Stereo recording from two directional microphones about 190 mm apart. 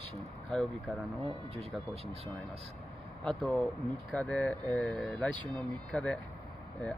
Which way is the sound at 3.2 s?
Centre (ahead or behind).